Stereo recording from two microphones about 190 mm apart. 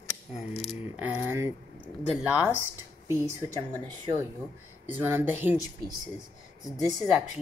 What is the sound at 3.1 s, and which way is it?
Speech, 15° right (ahead or behind).